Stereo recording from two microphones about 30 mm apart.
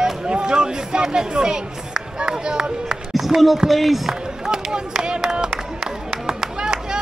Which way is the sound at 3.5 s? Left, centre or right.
Centre.